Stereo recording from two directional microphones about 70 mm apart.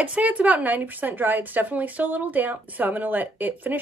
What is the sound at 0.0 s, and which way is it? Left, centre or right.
Speech, centre.